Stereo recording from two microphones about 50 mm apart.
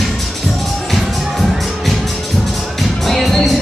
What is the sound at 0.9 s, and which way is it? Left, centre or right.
Music, centre.